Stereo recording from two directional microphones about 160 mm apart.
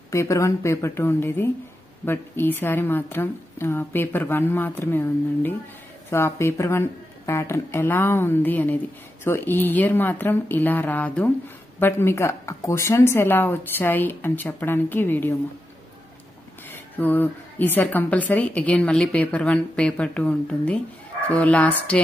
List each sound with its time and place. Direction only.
0.1 s speech: 20° left (ahead or behind)
16.7 s speech: 10° left (ahead or behind)